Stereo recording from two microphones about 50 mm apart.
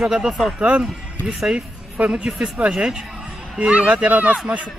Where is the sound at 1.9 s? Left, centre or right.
Right.